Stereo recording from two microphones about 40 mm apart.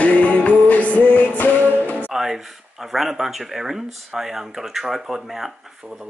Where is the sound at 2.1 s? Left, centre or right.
Centre.